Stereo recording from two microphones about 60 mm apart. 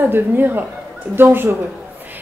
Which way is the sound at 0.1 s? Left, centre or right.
Right.